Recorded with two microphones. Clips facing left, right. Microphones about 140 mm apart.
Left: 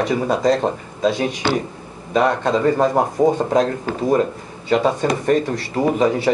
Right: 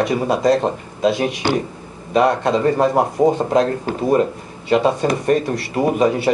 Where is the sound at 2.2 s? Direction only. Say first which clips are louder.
Right 1 dB; 20° right (ahead or behind).